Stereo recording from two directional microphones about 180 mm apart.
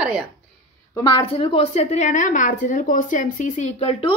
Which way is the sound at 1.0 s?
30° left (ahead or behind).